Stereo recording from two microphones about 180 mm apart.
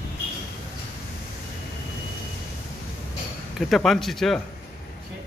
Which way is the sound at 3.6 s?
Centre (ahead or behind).